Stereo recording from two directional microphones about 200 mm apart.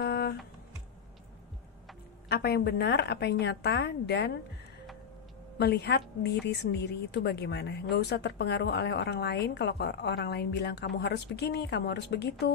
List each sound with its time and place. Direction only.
0.0 s typing: 55° left (ahead or behind)
2.2 s a woman's voice: 50° left (ahead or behind)
5.6 s a woman's voice: 55° left (ahead or behind)